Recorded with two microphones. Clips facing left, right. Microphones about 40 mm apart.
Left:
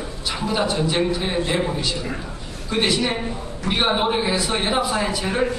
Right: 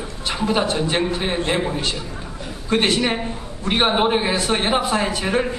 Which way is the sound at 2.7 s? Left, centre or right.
Right.